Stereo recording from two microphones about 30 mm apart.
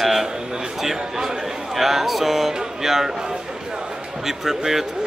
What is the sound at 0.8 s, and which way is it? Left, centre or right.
Speech, centre.